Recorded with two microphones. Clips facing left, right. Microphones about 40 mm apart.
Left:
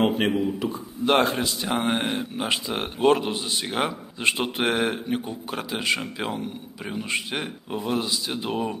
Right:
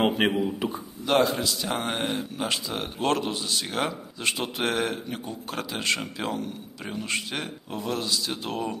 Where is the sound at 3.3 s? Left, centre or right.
Left.